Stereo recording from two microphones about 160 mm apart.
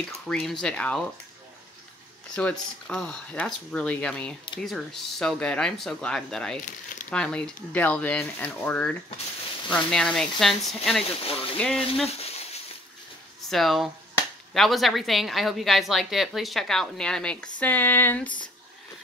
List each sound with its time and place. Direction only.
0.3 s speech: 5° left (ahead or behind)
2.3 s speech: 5° left (ahead or behind)
11.2 s speech: 35° left (ahead or behind)
11.5 s speech: 5° left (ahead or behind)
13.5 s speech: centre (ahead or behind)